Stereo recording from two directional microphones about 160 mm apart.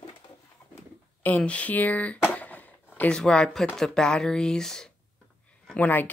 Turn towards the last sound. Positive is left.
turn(degrees=10)  # may be behind; listen again after turning